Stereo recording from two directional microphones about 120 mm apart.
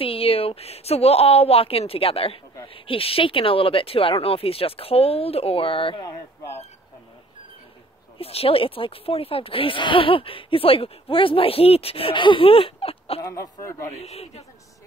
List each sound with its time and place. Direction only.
0.0 s a woman's voice: 50° left (ahead or behind)
6.0 s speech: 20° left (ahead or behind)
8.2 s speech: 55° left (ahead or behind)
13.2 s speech: 25° left (ahead or behind)
13.9 s a woman's voice: 60° left (ahead or behind)